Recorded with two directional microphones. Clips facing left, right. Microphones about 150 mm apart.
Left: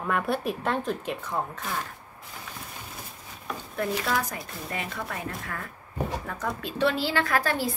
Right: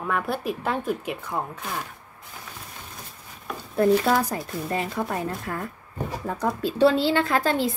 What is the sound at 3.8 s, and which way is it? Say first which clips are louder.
A woman's voice: right 9 dB; 35° right (ahead or behind).